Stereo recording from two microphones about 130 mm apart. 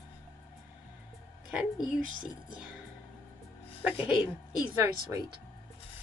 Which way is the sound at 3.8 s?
10° right (ahead or behind).